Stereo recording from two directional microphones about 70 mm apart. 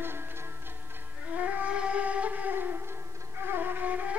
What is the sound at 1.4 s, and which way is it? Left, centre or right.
Music, right.